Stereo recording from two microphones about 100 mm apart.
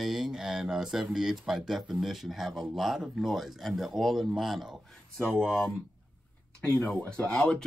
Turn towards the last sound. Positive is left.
turn(degrees=10)  # may be behind; listen again after turning